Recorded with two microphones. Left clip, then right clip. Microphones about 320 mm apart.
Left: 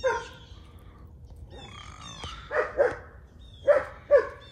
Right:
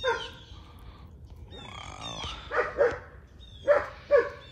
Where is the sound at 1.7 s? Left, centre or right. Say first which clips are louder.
Right 6 dB; centre.